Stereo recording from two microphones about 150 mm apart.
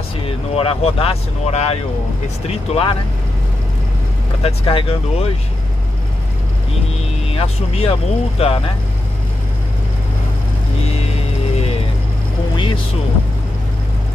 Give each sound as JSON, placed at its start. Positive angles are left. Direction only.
{"t": 0.2, "sound": "speech", "side_deg": 40}
{"t": 4.4, "sound": "speech", "side_deg": 40}
{"t": 7.2, "sound": "speech", "side_deg": 40}
{"t": 12.5, "sound": "a sound", "side_deg": 35}